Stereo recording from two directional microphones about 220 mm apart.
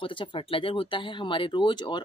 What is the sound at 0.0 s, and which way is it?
Speech, 20° left (ahead or behind).